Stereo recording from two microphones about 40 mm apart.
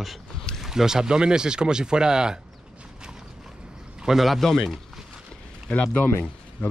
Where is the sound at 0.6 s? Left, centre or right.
Centre.